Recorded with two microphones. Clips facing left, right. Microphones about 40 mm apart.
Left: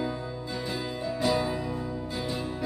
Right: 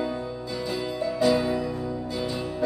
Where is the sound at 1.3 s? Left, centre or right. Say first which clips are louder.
Right 3 dB; centre.